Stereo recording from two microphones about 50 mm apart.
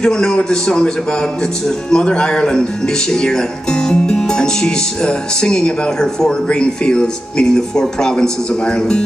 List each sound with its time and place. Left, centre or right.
0.0 s speech: centre